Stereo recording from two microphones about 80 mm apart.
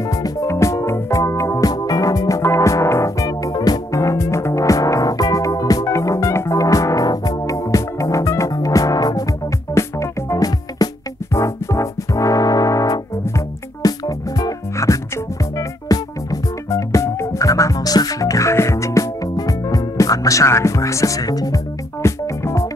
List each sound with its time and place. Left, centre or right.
0.1 s music: left
9.8 s music: left
22.0 s music: left